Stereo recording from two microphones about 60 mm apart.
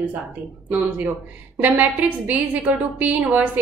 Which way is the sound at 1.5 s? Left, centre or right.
Right.